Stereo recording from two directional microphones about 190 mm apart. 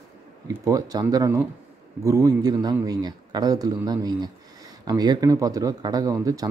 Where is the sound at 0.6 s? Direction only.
20° right (ahead or behind).